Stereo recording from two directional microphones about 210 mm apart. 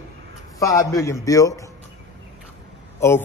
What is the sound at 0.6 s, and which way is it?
Speech, 15° left (ahead or behind).